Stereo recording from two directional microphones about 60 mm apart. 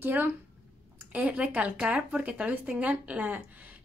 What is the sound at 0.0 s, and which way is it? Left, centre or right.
Speech, right.